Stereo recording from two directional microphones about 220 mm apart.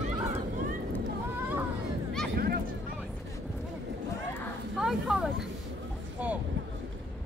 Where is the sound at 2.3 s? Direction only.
45° right (ahead or behind).